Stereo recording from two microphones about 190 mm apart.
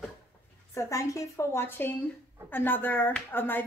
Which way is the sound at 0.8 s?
15° left (ahead or behind).